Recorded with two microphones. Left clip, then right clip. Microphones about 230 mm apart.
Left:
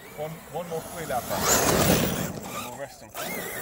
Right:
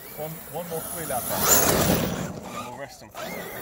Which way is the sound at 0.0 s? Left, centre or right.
Right.